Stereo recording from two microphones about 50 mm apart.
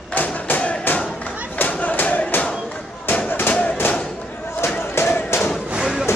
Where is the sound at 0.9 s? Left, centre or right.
Left.